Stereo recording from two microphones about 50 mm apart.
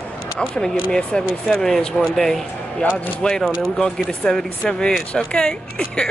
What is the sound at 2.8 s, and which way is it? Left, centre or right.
Speech, left.